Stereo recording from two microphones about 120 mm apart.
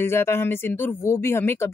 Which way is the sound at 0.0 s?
20° left (ahead or behind).